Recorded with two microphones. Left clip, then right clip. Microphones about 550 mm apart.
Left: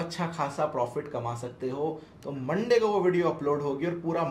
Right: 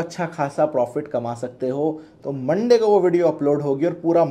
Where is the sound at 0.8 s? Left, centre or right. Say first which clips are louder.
Right 9 dB; right.